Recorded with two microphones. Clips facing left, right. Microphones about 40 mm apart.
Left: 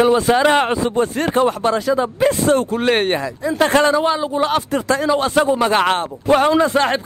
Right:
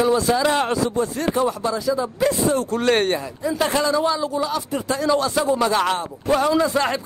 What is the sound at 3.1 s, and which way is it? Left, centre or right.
Speech, left.